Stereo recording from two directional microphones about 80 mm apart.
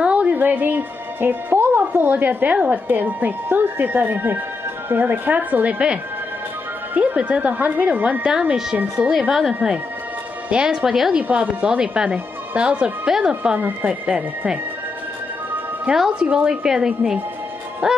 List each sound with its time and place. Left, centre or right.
0.0 s a woman's voice: centre
8.3 s speech: centre
11.2 s speech: centre
13.4 s speech: right
15.9 s speech: centre